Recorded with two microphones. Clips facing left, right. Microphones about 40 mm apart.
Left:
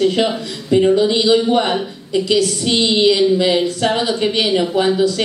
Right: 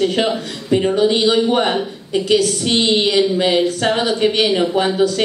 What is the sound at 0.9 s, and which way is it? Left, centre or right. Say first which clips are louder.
Speech: left 1 dB; right.